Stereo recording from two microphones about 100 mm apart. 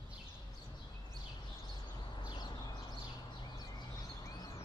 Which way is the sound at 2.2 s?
50° left (ahead or behind).